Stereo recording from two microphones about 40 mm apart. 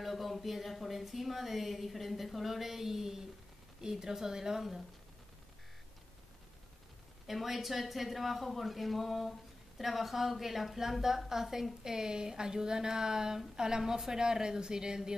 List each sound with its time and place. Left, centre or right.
0.0 s speech: centre
7.2 s speech: centre